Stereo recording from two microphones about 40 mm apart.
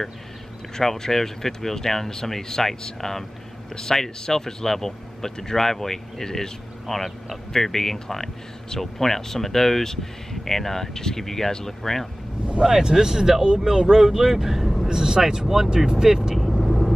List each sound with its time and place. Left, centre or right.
0.7 s a man's voice: centre
12.6 s speech: centre
14.9 s speech: centre
15.9 s vehicle: centre